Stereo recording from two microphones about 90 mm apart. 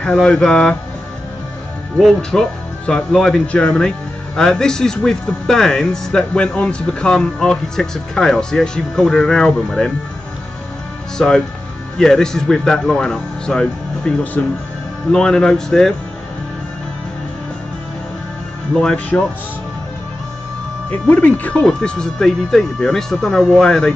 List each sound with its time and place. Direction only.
0.0 s speech: 10° left (ahead or behind)
2.0 s speech: 5° left (ahead or behind)
11.1 s speech: 5° left (ahead or behind)
18.8 s speech: 10° left (ahead or behind)
20.9 s speech: 15° left (ahead or behind)